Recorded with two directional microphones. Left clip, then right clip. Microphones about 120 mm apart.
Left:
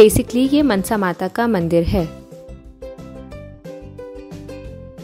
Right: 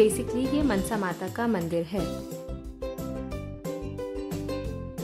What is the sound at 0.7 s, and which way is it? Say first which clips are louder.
Speech: left 9 dB; 90° left.